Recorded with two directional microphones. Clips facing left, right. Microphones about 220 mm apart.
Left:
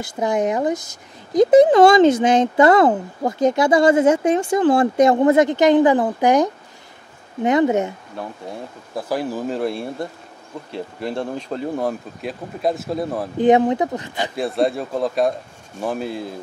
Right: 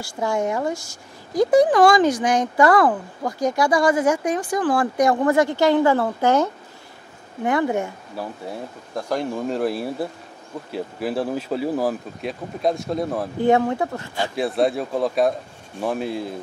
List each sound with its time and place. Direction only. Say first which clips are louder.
0.0 s speech: left 3 dB; 20° left (ahead or behind)
8.2 s speech: right 1 dB; centre (ahead or behind)
13.4 s speech: left 4 dB; 20° left (ahead or behind)
14.3 s speech: even; centre (ahead or behind)